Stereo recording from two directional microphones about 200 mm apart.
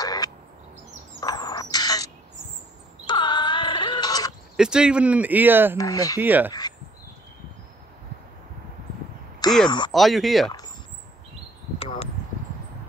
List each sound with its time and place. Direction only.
0.0 s bird: 20° left (ahead or behind)
1.2 s squawk: 20° left (ahead or behind)
3.1 s a sound: 20° left (ahead or behind)
4.6 s speech: 5° right (ahead or behind)
5.8 s speech: 15° left (ahead or behind)
6.1 s speech: 10° right (ahead or behind)
9.7 s speech: 20° left (ahead or behind)
9.9 s speech: centre (ahead or behind)
11.8 s a sound: 30° left (ahead or behind)